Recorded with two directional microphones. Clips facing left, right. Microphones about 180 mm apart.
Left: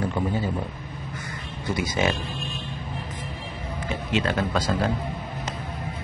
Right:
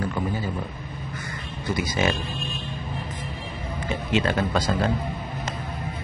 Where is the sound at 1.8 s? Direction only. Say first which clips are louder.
Even; 15° left (ahead or behind).